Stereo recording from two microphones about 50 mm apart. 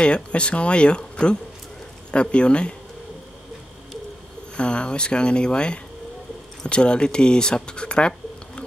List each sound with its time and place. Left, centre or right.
0.0 s speech: left
4.6 s speech: left